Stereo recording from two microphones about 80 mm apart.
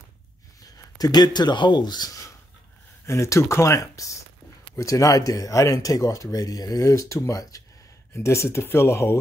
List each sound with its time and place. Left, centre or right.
0.7 s speech: left
3.1 s speech: left